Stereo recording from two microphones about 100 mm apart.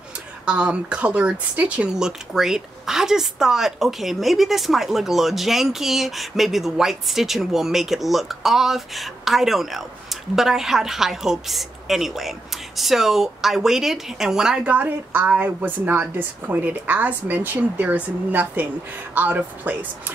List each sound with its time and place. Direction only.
0.5 s speech: 10° right (ahead or behind)